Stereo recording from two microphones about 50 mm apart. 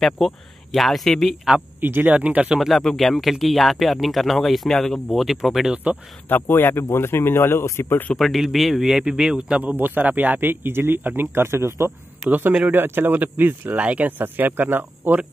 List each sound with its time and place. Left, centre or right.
0.0 s speech: centre
1.8 s speech: right
2.1 s speech: right
2.6 s speech: centre
5.1 s speech: centre
6.2 s speech: left
8.2 s speech: centre
9.8 s a man's voice: right
12.3 s speech: right
13.7 s speech: right